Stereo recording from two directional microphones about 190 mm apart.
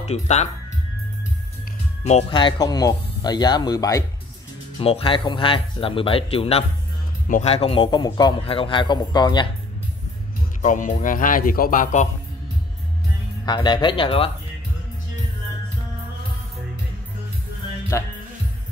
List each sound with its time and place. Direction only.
0.0 s speech: 35° left (ahead or behind)
2.0 s speech: 30° left (ahead or behind)
4.7 s speech: 30° left (ahead or behind)
10.6 s speech: 40° left (ahead or behind)
13.5 s speech: 20° left (ahead or behind)
17.9 s music: 15° left (ahead or behind)